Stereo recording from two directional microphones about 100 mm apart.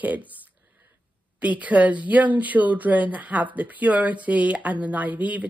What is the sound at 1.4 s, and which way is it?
Speech, 15° right (ahead or behind).